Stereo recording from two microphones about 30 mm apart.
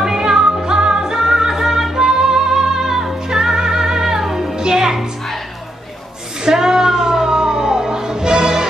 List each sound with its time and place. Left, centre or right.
0.0 s music: centre
6.4 s music: centre